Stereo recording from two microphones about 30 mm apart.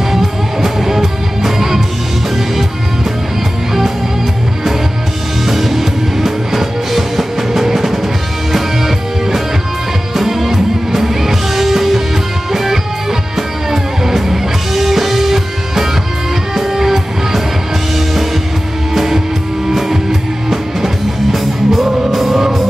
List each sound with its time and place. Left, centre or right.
0.1 s music: centre
5.4 s music: centre
18.9 s music: centre